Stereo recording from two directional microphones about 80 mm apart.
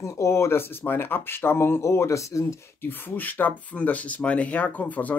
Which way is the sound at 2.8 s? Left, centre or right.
Left.